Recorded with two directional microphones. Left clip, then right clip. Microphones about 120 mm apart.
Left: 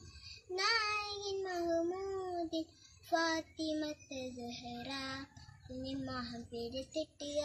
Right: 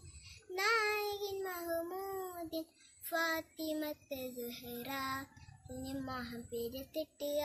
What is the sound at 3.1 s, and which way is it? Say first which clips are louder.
Child singing: left 1 dB; 40° right (ahead or behind).